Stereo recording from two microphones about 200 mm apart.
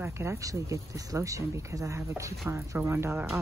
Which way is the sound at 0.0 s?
15° right (ahead or behind).